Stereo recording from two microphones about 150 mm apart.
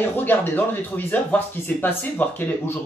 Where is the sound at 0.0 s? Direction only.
10° left (ahead or behind).